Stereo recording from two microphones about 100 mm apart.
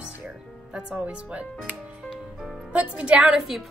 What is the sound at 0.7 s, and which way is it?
Speech, 10° right (ahead or behind).